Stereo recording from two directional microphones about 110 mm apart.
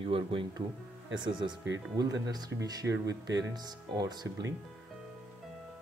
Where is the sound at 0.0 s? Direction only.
55° right (ahead or behind).